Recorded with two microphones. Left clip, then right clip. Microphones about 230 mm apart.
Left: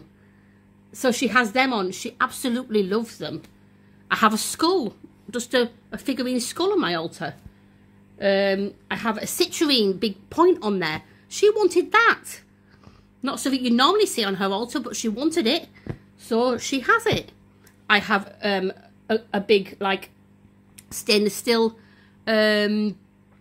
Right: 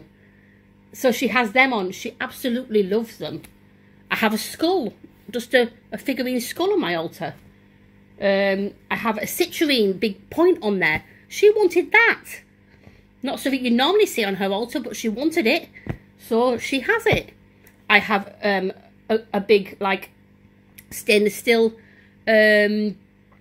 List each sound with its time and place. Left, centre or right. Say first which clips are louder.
0.9 s a woman's voice: right 1 dB; centre